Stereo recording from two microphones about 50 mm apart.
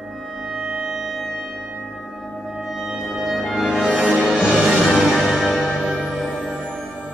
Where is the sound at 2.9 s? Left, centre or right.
Centre.